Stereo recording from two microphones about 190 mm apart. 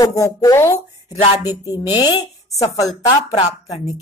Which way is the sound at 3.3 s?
30° left (ahead or behind).